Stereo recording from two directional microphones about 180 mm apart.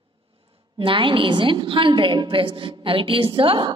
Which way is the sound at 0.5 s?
30° right (ahead or behind).